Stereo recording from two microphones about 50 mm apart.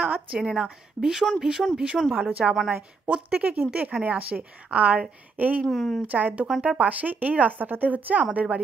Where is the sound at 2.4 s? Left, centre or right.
Centre; by 5.7 s right.